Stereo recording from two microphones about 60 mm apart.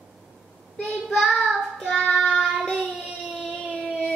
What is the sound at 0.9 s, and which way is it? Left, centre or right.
Child singing, centre.